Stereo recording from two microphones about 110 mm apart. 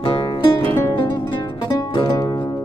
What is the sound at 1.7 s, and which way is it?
Music, 35° left (ahead or behind).